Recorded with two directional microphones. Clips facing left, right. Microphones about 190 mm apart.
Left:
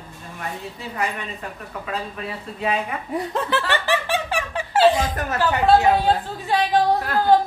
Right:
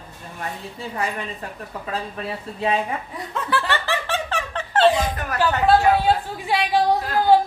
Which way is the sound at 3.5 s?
15° left (ahead or behind).